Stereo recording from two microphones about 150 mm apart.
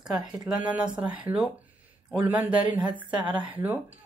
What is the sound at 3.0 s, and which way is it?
Speech, 35° right (ahead or behind).